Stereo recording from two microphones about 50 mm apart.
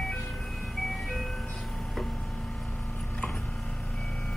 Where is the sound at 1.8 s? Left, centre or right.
Centre.